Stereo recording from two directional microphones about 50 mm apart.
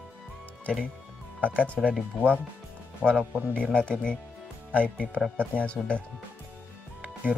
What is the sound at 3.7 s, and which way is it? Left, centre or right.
Speech, centre.